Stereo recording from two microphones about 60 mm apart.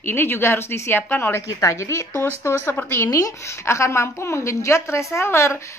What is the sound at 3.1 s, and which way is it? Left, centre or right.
A woman's voice, left.